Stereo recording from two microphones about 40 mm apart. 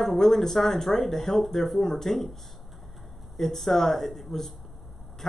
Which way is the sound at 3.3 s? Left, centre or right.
Centre.